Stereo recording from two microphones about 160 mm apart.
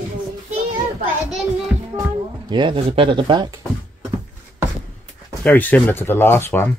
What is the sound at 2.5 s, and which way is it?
Speech, 35° right (ahead or behind).